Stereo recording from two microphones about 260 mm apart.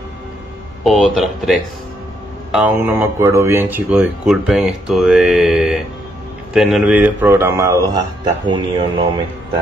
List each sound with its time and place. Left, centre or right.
0.8 s speech: centre
2.5 s a man's voice: centre